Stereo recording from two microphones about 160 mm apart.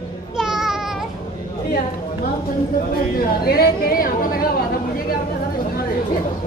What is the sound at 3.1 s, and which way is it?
A woman's voice, 70° left (ahead or behind).